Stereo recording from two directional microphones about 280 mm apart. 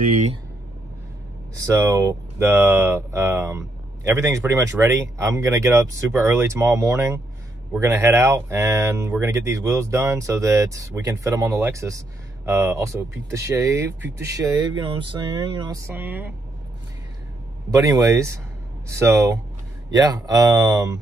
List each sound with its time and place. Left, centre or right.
0.1 s speech: right
1.7 s speech: centre
17.6 s speech: centre